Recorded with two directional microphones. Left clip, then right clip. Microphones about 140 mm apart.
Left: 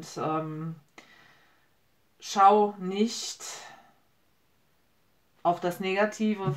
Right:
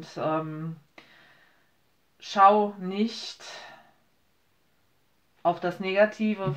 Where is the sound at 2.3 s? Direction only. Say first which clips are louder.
Right 1 dB; 25° right (ahead or behind).